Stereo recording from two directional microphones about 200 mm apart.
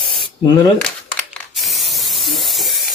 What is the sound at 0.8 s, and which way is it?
Spray, centre (ahead or behind).